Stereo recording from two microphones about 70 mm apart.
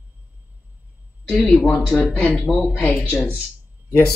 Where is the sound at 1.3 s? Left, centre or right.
Centre.